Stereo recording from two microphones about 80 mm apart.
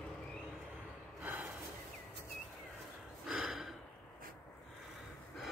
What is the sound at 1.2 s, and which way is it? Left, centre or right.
Gasp, right.